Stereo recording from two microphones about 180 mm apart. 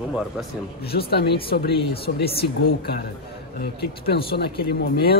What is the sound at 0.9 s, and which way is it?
Speech, 60° left (ahead or behind).